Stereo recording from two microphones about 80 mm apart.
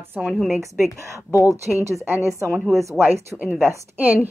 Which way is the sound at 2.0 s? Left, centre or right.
Right.